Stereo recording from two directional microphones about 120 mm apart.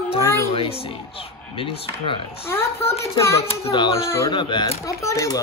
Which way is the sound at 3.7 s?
40° left (ahead or behind).